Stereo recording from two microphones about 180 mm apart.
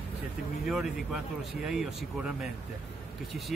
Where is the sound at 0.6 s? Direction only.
5° right (ahead or behind).